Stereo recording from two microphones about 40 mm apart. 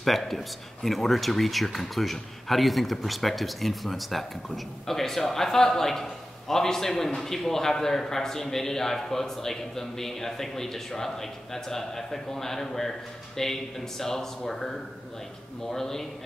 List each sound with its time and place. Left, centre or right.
0.0 s a man's voice: centre